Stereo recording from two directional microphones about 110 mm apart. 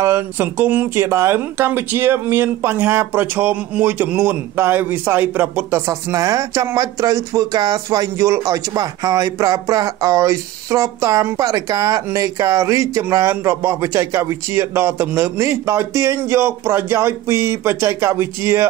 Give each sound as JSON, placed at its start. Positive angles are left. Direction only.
{"t": 0.0, "sound": "speech", "side_deg": -20}